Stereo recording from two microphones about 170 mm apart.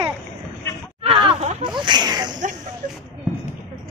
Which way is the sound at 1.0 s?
35° right (ahead or behind).